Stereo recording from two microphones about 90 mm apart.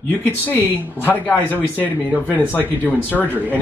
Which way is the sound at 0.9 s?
20° left (ahead or behind).